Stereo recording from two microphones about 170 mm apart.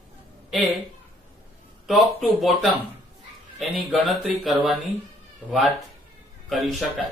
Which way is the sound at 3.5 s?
Centre (ahead or behind).